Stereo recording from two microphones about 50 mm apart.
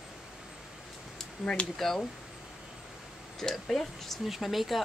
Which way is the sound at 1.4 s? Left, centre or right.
Left.